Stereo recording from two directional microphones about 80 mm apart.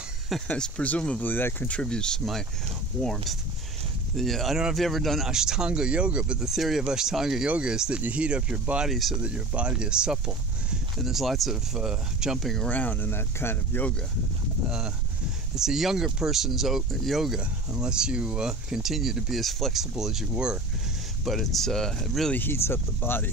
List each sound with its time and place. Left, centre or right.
0.5 s speech: centre
1.8 s speech: centre
12.6 s speech: centre
15.5 s speech: centre
22.3 s speech: left